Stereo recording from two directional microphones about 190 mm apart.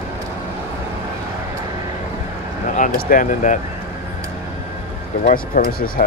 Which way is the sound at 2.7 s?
45° left (ahead or behind).